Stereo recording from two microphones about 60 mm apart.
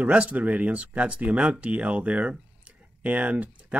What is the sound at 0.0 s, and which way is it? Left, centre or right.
Speech, right.